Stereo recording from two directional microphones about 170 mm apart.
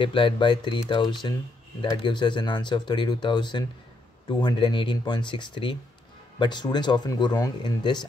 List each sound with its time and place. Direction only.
0.0 s speech: 30° left (ahead or behind)